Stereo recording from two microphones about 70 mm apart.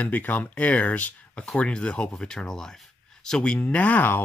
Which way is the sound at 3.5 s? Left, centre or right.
Left.